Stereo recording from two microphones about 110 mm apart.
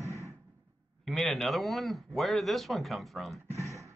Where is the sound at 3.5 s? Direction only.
30° right (ahead or behind).